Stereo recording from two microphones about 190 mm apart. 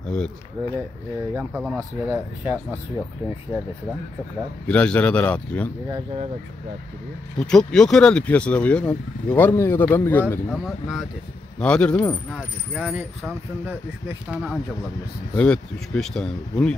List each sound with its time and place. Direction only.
0.0 s speech: 5° left (ahead or behind)
0.6 s speech: 20° right (ahead or behind)
1.3 s speech: 5° right (ahead or behind)
4.6 s speech: 5° left (ahead or behind)
7.3 s speech: 5° left (ahead or behind)
12.7 s speech: 10° right (ahead or behind)